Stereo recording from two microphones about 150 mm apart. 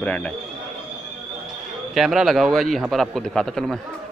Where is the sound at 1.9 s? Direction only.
5° right (ahead or behind).